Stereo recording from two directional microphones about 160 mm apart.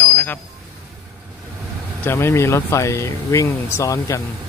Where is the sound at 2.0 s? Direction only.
15° left (ahead or behind).